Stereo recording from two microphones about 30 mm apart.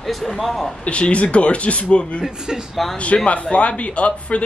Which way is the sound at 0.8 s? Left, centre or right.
Left.